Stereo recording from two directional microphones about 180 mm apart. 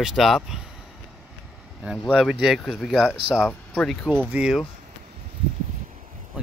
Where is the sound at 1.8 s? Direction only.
5° right (ahead or behind).